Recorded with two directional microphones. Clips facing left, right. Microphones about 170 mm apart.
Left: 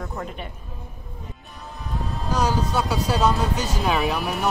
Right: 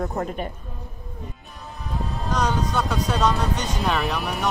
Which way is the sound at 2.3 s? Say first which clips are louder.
Left 1 dB; 5° left (ahead or behind).